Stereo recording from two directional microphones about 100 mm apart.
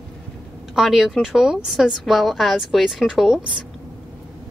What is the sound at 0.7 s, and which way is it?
A woman's voice, 5° right (ahead or behind).